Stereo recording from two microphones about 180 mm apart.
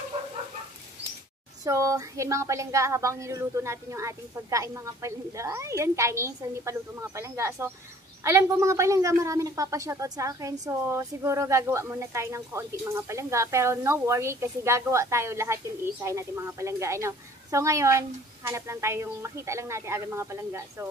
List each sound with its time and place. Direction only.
1.6 s a woman's voice: 20° right (ahead or behind)